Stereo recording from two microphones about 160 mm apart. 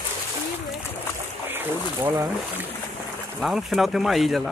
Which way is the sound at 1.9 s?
25° right (ahead or behind).